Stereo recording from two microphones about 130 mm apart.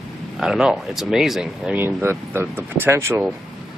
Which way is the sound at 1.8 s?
15° right (ahead or behind).